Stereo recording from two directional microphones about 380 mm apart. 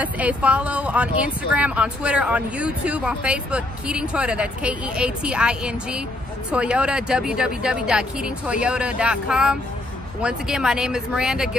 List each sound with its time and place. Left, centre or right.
0.0 s speech: centre